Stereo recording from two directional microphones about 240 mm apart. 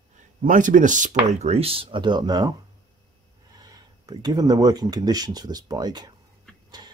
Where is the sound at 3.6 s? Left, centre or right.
Centre.